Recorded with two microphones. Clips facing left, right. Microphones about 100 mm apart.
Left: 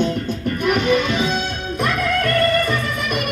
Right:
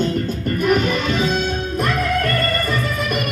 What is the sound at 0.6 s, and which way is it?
Music, 40° right (ahead or behind).